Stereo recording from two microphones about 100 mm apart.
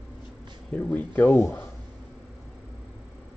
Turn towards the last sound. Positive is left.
turn(degrees=20)  # may be behind; listen again after turning